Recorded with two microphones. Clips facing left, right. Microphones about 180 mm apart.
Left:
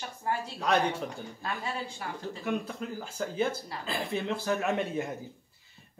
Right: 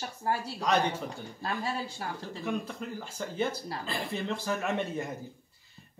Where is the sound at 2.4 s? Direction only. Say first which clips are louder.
Left 1 dB; centre (ahead or behind).